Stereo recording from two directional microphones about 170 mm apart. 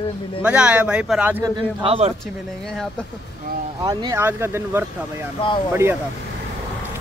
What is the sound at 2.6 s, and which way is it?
Speech, centre (ahead or behind).